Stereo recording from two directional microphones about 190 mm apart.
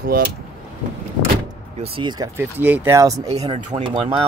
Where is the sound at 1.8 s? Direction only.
25° right (ahead or behind).